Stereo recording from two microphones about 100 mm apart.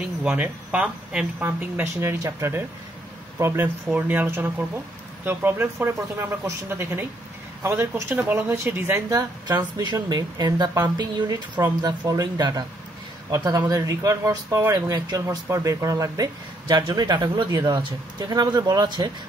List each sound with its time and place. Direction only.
0.3 s speech: 15° right (ahead or behind)
9.1 s speech: 40° right (ahead or behind)